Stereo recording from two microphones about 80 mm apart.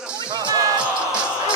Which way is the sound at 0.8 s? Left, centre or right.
Centre.